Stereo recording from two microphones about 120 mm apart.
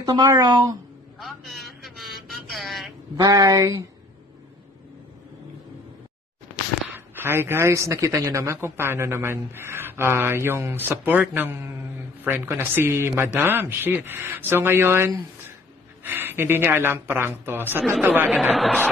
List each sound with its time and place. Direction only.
0.0 s speech: 35° right (ahead or behind)
1.2 s a sound: centre (ahead or behind)
3.2 s speech: 30° right (ahead or behind)
6.9 s speech: 20° right (ahead or behind)